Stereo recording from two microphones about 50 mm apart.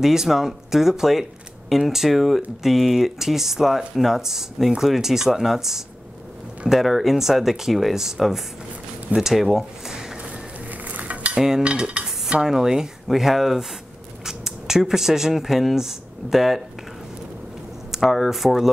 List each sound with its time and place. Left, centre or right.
0.0 s speech: centre
9.1 s a sound: centre
10.9 s cutlery: right
11.3 s cutlery: centre
11.6 s dishes: centre
14.2 s speech: centre
17.9 s speech: centre